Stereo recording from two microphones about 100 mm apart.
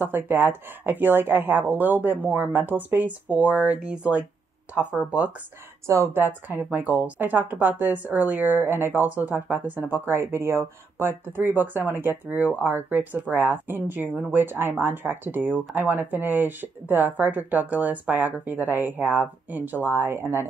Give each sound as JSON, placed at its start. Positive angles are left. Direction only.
{"t": 0.0, "sound": "speech", "side_deg": -20}
{"t": 5.9, "sound": "a woman's voice", "side_deg": -25}